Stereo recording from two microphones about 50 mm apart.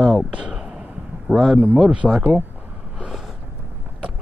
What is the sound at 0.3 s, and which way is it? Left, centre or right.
Speech, right.